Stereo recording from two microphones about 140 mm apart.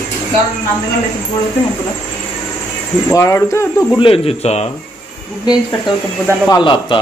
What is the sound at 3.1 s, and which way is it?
Speech, 20° left (ahead or behind).